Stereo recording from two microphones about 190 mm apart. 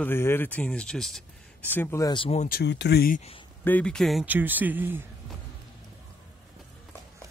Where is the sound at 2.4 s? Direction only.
55° left (ahead or behind).